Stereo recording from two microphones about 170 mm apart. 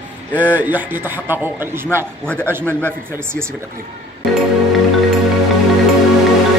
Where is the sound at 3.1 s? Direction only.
15° right (ahead or behind).